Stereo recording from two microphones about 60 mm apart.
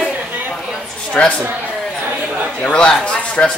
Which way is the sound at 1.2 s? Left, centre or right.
Left.